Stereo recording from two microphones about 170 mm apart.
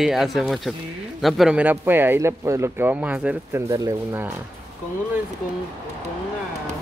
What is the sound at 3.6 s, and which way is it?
Speech, 20° right (ahead or behind).